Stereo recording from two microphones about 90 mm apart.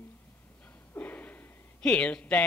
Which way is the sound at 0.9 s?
20° left (ahead or behind).